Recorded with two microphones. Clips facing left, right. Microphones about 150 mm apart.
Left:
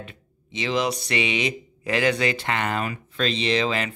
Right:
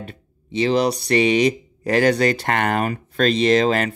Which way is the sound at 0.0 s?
40° right (ahead or behind).